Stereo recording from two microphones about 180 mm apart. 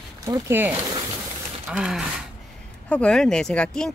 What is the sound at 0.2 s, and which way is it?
Speech, 15° right (ahead or behind).